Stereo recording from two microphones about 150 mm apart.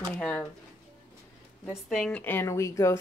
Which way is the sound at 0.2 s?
10° left (ahead or behind).